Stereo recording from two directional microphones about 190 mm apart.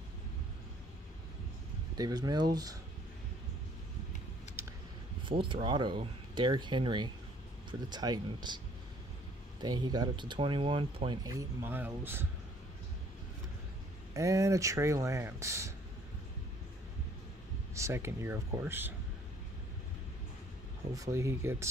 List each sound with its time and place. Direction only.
2.0 s speech: 20° right (ahead or behind)
5.3 s speech: 25° right (ahead or behind)
9.6 s speech: 20° right (ahead or behind)
14.1 s speech: 15° right (ahead or behind)
17.7 s speech: 15° right (ahead or behind)
20.9 s speech: 15° right (ahead or behind)